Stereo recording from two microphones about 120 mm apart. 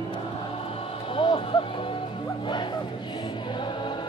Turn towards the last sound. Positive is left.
turn(degrees=40)  # may be behind; listen again after turning